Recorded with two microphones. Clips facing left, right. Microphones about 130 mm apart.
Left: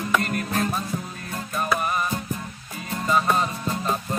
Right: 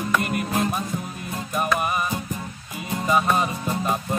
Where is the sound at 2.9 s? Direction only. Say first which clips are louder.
Right 1 dB; 15° right (ahead or behind).